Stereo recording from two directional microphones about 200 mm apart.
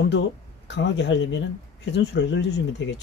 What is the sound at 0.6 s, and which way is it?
Speech, 65° left (ahead or behind).